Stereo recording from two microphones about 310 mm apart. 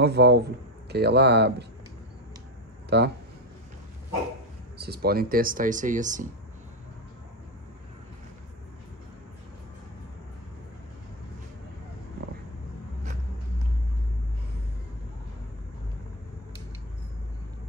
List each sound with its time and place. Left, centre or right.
0.0 s a man's voice: right
2.9 s a man's voice: right
4.7 s speech: right